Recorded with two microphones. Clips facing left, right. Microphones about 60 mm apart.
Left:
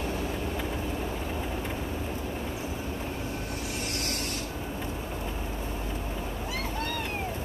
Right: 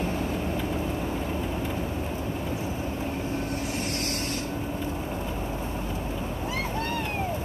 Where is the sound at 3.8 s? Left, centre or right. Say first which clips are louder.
Right 3 dB; right.